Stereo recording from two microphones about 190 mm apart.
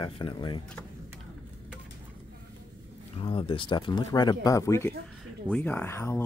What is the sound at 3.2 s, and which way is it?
Speech, 25° left (ahead or behind).